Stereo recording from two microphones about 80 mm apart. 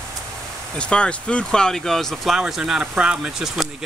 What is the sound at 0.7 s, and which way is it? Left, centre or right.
Speech, centre.